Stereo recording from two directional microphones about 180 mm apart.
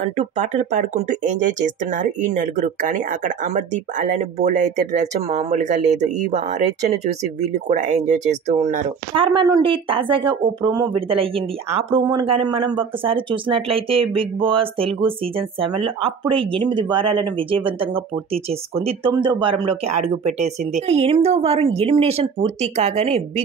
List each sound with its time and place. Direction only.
0.2 s speech: 40° right (ahead or behind)
9.1 s speech: 25° right (ahead or behind)